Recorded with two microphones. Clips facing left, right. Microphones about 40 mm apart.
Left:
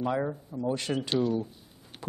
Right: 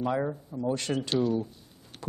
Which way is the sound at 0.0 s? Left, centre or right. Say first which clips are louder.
Even; centre.